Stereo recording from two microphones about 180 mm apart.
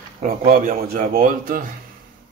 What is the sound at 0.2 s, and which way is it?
Speech, 55° right (ahead or behind).